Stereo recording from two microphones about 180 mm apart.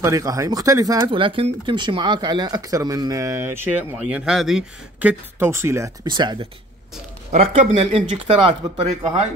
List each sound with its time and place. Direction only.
0.0 s speech: 20° right (ahead or behind)
7.3 s speech: 35° right (ahead or behind)